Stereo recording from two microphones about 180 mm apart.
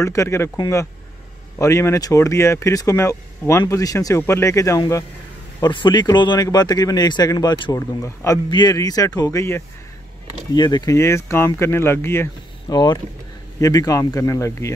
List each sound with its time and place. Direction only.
0.0 s speech: 15° left (ahead or behind)